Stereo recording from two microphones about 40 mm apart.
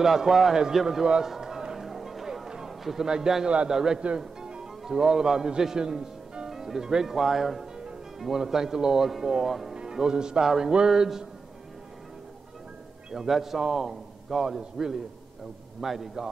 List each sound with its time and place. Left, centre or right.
0.0 s speech: centre
1.2 s music: centre
3.1 s speech: centre
3.4 s a man's voice: right
3.7 s speech: centre
4.5 s music: centre
6.5 s speech: centre
9.8 s speech: centre
13.1 s speech: centre
15.8 s speech: centre